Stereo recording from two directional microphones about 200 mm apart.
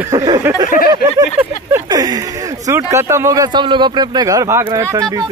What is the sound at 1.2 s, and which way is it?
Speech, 15° right (ahead or behind).